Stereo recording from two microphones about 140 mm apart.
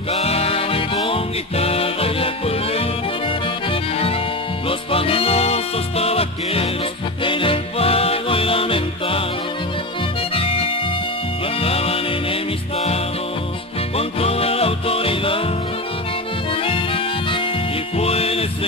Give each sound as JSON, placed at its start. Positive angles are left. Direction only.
{"t": 0.1, "sound": "music", "side_deg": 45}
{"t": 4.6, "sound": "music", "side_deg": 40}
{"t": 10.3, "sound": "music", "side_deg": 40}
{"t": 16.6, "sound": "music", "side_deg": 40}